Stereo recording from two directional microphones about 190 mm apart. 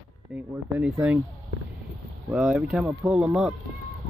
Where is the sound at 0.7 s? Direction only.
10° right (ahead or behind).